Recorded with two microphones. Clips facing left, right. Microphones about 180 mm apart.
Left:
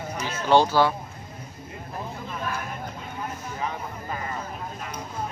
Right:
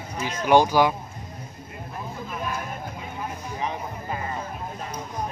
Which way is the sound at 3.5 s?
20° right (ahead or behind).